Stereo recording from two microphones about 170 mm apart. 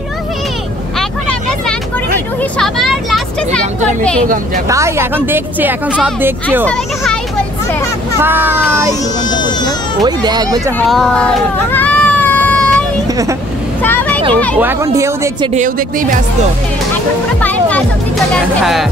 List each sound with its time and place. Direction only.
2.6 s speech: centre (ahead or behind)
4.6 s a woman's voice: 15° right (ahead or behind)
8.2 s a woman's voice: 10° right (ahead or behind)
10.0 s speech: 25° right (ahead or behind)
10.8 s a sound: 5° left (ahead or behind)
13.8 s vehicle: 10° left (ahead or behind)
14.3 s speech: 5° left (ahead or behind)
14.6 s a woman's voice: 15° right (ahead or behind)
15.5 s speech: 50° right (ahead or behind)
17.4 s speech: 10° left (ahead or behind)